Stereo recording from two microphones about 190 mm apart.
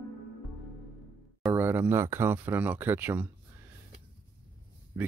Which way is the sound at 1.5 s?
10° right (ahead or behind).